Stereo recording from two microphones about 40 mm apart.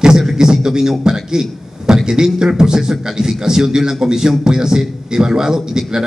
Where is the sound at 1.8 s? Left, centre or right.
Centre.